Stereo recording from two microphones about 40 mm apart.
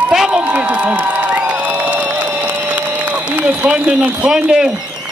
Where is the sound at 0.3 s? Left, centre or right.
Right.